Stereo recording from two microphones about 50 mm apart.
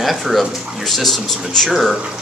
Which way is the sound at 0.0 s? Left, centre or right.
Centre.